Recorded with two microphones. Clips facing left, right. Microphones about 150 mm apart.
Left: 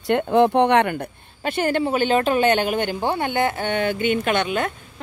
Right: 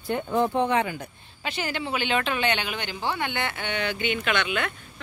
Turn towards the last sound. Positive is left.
turn(degrees=40)  # may be behind; listen again after turning